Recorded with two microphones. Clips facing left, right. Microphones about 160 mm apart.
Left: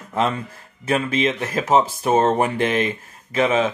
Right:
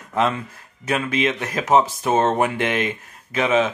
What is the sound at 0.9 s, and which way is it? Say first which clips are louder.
Speech: left 1 dB; 30° left (ahead or behind).